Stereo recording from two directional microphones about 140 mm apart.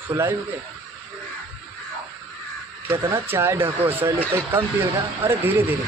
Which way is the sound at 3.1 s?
15° right (ahead or behind).